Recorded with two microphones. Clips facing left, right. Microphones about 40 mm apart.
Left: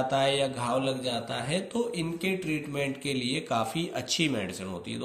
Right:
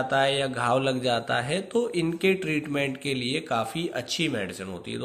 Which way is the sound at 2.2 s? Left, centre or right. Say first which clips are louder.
Right 6 dB; right.